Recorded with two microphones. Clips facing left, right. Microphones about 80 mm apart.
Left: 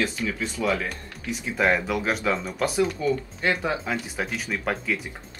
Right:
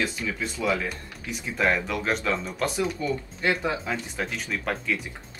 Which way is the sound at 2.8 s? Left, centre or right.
Centre.